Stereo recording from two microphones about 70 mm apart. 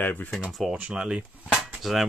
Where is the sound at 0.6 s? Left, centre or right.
Centre.